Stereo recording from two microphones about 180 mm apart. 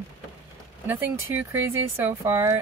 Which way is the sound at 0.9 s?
10° right (ahead or behind).